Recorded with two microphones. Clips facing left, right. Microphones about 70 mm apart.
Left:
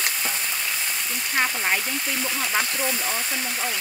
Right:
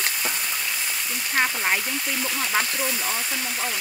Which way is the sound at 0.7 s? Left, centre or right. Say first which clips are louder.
Even; centre.